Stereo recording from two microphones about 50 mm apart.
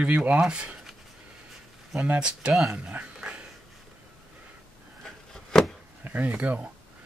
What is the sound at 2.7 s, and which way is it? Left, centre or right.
Dog, right.